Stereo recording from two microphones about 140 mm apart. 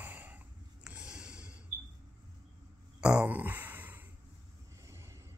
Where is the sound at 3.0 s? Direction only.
5° right (ahead or behind).